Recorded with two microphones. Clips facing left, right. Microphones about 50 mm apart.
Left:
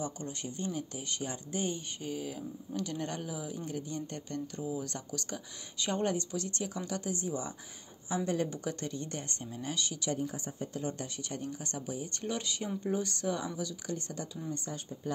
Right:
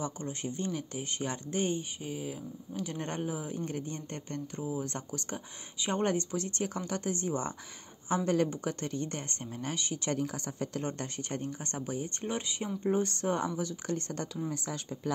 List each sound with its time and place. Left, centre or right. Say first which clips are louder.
0.2 s speech: right 3 dB; right
0.7 s speech: right 2 dB; right
1.0 s speech: right 3 dB; right
1.8 s speech: even; centre
2.9 s speech: right 2 dB; right
10.1 s speech: right 2 dB; right
10.8 s speech: right 1 dB; right
12.2 s speech: right 1 dB; right
12.9 s speech: right 4 dB; right
14.5 s speech: right 2 dB; right